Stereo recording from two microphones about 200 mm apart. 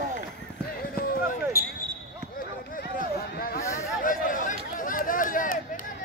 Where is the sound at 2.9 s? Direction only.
45° left (ahead or behind).